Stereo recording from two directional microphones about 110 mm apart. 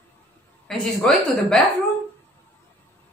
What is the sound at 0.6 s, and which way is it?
A woman's voice, 5° left (ahead or behind).